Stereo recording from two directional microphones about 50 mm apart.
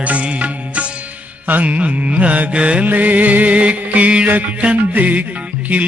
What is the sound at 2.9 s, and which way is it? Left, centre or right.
Music, right.